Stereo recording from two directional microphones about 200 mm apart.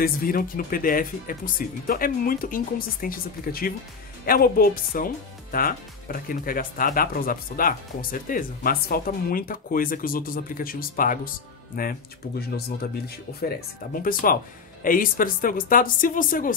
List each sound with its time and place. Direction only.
0.0 s speech: 45° left (ahead or behind)